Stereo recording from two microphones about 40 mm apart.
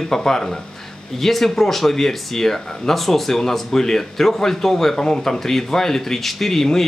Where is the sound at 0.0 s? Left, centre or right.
Centre.